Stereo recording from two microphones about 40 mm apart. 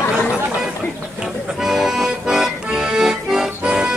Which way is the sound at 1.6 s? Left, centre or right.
Centre.